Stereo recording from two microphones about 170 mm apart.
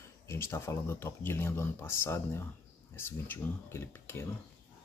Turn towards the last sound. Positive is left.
turn(degrees=15)  # may be behind; listen again after turning